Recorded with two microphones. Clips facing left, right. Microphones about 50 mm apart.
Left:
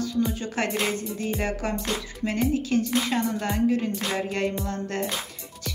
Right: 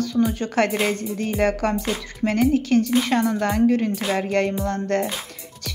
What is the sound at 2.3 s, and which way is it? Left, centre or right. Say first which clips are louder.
Music: right 6 dB; right.